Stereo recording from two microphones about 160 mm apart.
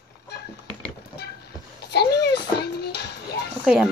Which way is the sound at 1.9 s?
90° left.